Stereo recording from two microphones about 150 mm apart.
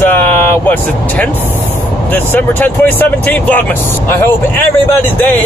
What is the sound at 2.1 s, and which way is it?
Speech, 15° left (ahead or behind).